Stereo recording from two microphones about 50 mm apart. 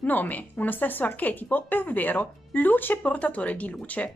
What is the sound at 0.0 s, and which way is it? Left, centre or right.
A woman's voice, left.